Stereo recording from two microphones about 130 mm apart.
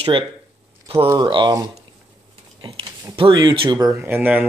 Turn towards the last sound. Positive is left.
turn(degrees=-15)  # may be behind; listen again after turning